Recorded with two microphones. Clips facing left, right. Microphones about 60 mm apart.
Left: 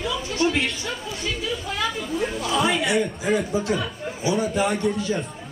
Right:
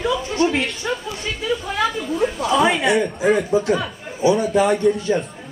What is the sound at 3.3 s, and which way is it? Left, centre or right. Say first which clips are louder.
Speech: right 5 dB; right.